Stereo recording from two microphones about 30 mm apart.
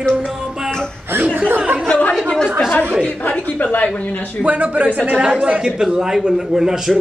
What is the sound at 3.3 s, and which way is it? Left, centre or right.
Speech, left.